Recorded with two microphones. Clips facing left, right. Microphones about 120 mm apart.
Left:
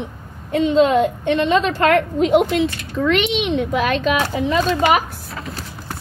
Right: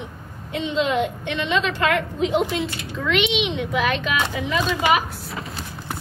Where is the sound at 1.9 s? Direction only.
60° left (ahead or behind).